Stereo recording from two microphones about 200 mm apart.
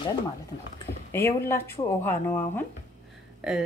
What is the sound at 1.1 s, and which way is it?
Speech, 15° left (ahead or behind).